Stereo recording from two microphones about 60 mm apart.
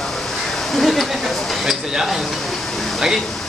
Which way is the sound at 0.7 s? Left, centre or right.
Centre.